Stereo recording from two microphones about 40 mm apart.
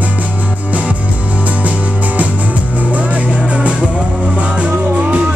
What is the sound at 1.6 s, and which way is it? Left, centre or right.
Music, right.